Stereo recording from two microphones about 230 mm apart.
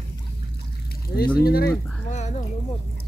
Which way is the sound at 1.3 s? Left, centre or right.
Left.